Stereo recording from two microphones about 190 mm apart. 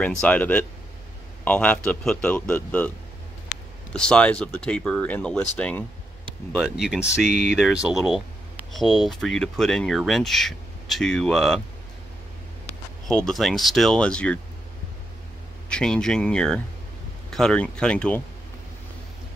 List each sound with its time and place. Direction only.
0.0 s speech: 5° left (ahead or behind)
3.9 s speech: 5° left (ahead or behind)
7.2 s a sound: 60° left (ahead or behind)
7.5 s speech: 5° right (ahead or behind)
13.1 s speech: centre (ahead or behind)
15.7 s speech: 5° left (ahead or behind)